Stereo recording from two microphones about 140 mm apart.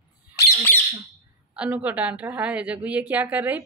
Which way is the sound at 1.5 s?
10° right (ahead or behind).